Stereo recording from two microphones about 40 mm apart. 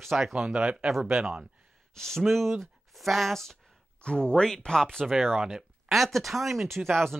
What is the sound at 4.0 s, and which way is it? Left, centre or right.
Speech, left.